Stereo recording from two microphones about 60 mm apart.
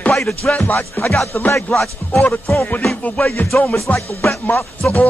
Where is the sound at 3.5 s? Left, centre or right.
Left.